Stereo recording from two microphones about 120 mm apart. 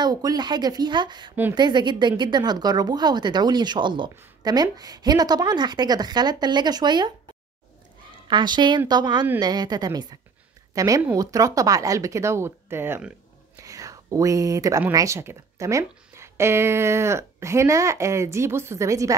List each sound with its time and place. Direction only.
0.0 s speech: 30° right (ahead or behind)
8.3 s speech: 40° right (ahead or behind); by 13.0 s 20° right (ahead or behind)
13.6 s whispering: 30° right (ahead or behind)
14.9 s speech: 25° right (ahead or behind)